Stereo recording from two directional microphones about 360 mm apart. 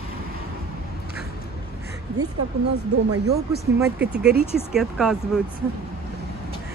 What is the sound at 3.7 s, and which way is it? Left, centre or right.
Speech, centre.